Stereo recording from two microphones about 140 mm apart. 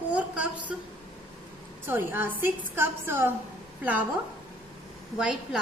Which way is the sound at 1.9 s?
15° right (ahead or behind).